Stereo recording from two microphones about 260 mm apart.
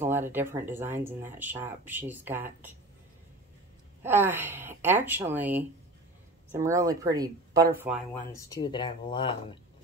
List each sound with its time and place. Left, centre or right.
0.0 s speech: centre
4.0 s speech: centre
8.3 s speech: centre